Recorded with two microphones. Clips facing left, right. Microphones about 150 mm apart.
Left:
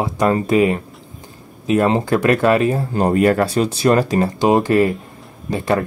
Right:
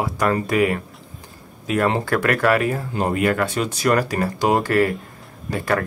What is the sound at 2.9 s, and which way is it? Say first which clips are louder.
Speech: left 6 dB; 40° left (ahead or behind).